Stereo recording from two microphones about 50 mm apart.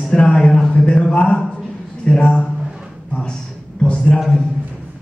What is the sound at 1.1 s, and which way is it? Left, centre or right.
Speech, left.